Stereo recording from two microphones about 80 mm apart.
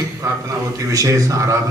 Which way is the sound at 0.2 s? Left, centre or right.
Right.